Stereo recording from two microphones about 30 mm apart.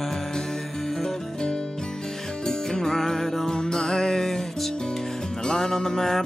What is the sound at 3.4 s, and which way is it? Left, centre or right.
Music, left.